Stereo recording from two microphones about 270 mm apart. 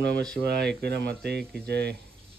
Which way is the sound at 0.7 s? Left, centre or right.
Right.